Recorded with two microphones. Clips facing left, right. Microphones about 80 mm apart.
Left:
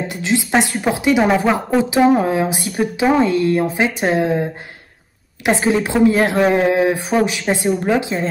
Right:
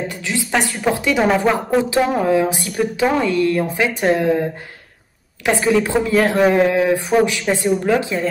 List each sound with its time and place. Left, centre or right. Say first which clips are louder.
0.1 s speech: left 4 dB; centre
2.2 s speech: right 2 dB; left